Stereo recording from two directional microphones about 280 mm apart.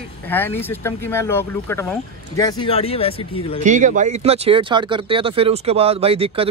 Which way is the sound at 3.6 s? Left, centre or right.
Right.